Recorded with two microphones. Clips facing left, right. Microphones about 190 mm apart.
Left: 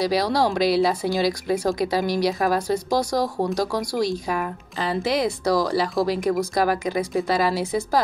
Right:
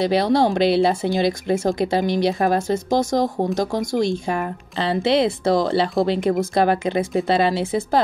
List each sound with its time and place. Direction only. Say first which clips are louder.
0.0 s speech: right 3 dB; 25° right (ahead or behind)